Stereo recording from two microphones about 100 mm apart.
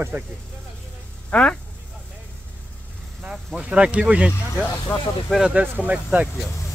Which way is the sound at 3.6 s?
10° right (ahead or behind).